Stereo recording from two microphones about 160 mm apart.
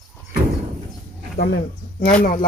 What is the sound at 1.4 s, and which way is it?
Speech, 80° left.